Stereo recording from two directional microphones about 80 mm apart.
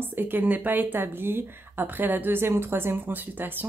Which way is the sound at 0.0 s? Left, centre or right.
Right.